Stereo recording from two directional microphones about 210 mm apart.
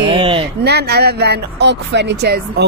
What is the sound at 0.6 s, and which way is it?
Speech, 50° right (ahead or behind).